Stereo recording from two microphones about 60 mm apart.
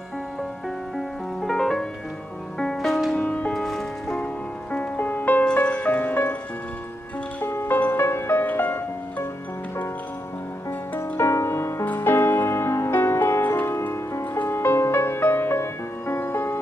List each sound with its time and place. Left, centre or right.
0.9 s music: centre
3.2 s music: left
3.6 s music: centre
4.7 s music: left
5.4 s music: centre
7.4 s music: left
11.0 s music: left
11.8 s music: left
14.4 s music: left